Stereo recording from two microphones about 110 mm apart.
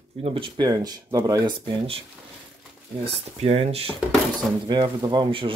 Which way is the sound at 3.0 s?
65° right (ahead or behind).